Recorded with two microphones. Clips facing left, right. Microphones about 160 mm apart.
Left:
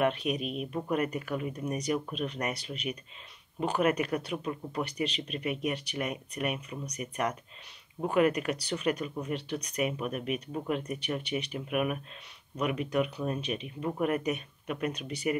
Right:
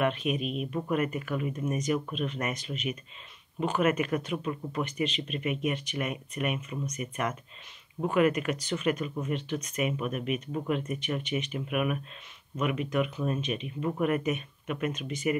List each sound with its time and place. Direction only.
0.0 s speech: 40° left (ahead or behind)
8.1 s speech: 40° left (ahead or behind)